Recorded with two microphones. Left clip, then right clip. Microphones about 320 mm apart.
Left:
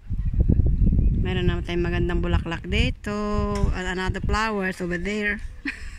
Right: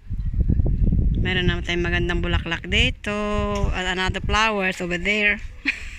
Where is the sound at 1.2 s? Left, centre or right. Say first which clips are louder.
Right 6 dB; centre.